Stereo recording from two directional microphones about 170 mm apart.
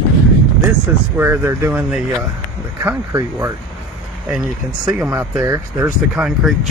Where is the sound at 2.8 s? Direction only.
15° right (ahead or behind).